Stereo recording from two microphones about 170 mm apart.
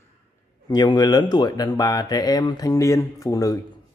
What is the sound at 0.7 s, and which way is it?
Speech, 25° left (ahead or behind).